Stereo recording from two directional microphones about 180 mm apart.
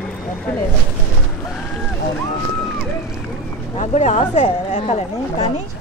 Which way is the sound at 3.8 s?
40° left (ahead or behind).